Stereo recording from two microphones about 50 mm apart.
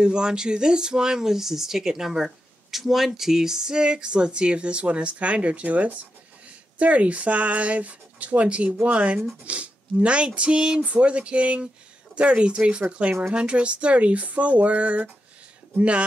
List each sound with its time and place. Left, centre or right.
0.0 s speech: centre